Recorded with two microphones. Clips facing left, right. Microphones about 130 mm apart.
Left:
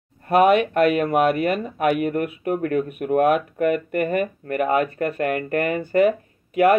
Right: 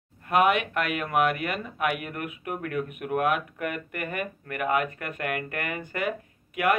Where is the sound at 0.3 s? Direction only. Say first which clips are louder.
Left 7 dB; 35° left (ahead or behind).